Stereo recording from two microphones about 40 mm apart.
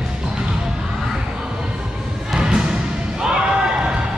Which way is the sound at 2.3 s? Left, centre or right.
Centre.